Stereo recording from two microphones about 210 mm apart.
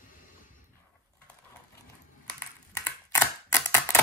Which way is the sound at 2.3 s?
10° left (ahead or behind).